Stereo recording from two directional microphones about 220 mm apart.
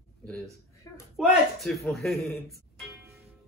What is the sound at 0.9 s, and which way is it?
Speech, 15° left (ahead or behind).